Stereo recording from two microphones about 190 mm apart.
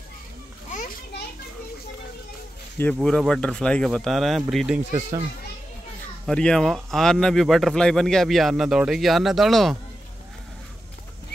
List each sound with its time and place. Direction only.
0.7 s children playing: 40° left (ahead or behind)
2.8 s speech: 5° left (ahead or behind)
6.2 s speech: 5° left (ahead or behind)